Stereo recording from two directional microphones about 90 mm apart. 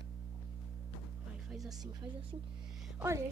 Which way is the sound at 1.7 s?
45° right (ahead or behind).